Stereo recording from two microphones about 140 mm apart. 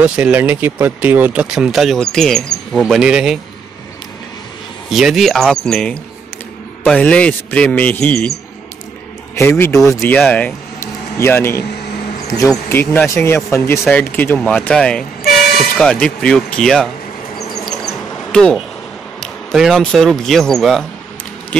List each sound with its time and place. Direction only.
0.0 s speech: 10° right (ahead or behind)
4.8 s speech: centre (ahead or behind)
9.3 s a man's voice: 20° left (ahead or behind)
10.1 s speech: 10° left (ahead or behind)
17.6 s insect: 5° left (ahead or behind)
19.1 s speech: centre (ahead or behind)